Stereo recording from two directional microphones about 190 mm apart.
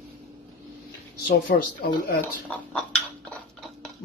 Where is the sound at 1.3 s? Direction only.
50° left (ahead or behind).